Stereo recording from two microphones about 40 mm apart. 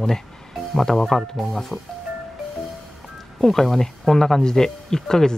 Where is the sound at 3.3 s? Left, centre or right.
Centre.